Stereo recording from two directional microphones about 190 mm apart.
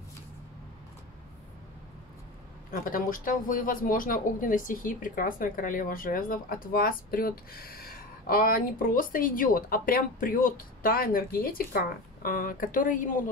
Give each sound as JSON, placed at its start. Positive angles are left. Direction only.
{"t": 2.7, "sound": "speech", "side_deg": 45}